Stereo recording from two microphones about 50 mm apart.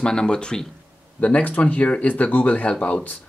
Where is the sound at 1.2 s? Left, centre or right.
Left.